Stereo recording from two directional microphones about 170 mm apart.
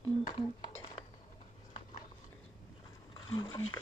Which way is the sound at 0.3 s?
25° left (ahead or behind).